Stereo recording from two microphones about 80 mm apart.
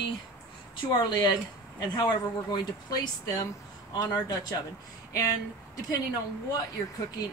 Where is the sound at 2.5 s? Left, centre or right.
Left.